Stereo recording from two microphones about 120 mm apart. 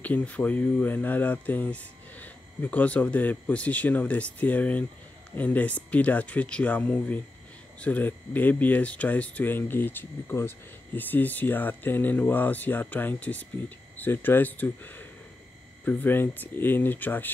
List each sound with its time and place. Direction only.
0.0 s speech: 15° left (ahead or behind)